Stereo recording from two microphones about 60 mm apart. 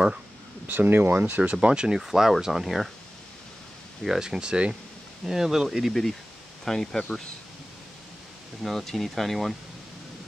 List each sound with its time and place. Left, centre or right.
0.7 s speech: right; by 2.0 s centre
2.0 s speech: centre
4.0 s speech: centre
8.6 s speech: centre